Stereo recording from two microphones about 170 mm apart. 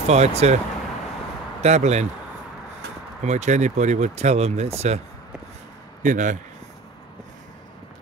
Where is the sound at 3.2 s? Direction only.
45° right (ahead or behind).